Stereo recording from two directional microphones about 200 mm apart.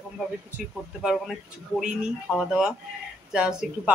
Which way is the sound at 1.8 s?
5° right (ahead or behind).